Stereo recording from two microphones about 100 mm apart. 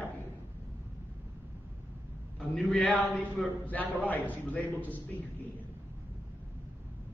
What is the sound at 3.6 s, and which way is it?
A man's voice, 15° left (ahead or behind).